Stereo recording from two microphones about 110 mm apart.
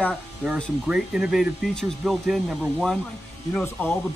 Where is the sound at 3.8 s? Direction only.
15° left (ahead or behind).